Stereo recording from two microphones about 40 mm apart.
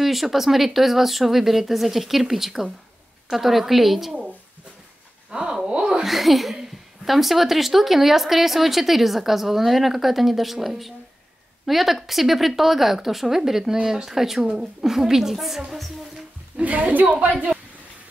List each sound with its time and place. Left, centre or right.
0.0 s speech: centre
5.3 s a sound: right
6.0 s a woman's voice: centre
16.5 s a woman's voice: right
16.9 s a woman's voice: right